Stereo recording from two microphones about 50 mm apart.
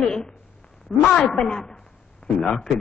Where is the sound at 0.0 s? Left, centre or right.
Centre.